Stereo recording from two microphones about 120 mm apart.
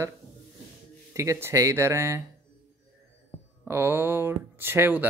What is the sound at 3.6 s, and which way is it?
Speech, 20° right (ahead or behind).